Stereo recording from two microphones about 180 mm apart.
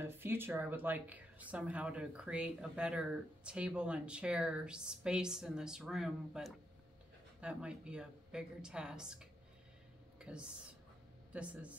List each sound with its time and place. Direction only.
0.0 s speech: 10° right (ahead or behind)
10.1 s a sound: 5° right (ahead or behind)
11.3 s speech: 5° right (ahead or behind)